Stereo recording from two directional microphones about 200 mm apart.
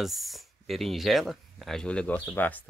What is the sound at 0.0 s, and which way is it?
Speech, centre (ahead or behind).